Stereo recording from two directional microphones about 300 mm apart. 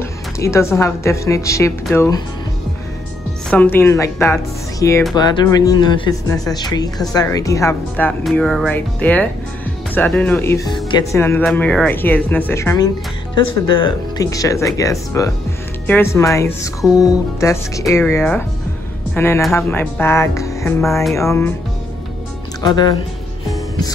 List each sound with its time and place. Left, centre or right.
0.4 s speech: centre
3.4 s speech: centre
22.6 s speech: centre